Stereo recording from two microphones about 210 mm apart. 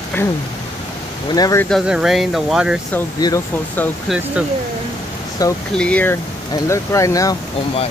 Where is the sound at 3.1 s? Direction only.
20° left (ahead or behind).